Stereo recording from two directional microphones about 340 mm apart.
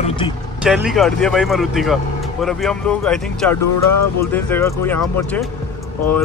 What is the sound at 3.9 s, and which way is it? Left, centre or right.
Speech, left.